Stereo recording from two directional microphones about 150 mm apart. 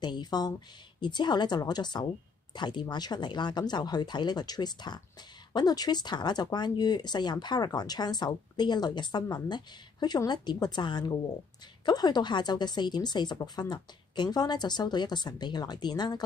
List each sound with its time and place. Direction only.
0.0 s speech: 30° left (ahead or behind)